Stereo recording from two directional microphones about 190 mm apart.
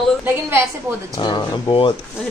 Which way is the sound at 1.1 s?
25° left (ahead or behind).